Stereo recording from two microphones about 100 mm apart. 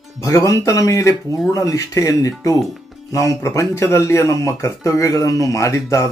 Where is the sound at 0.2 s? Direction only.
30° left (ahead or behind).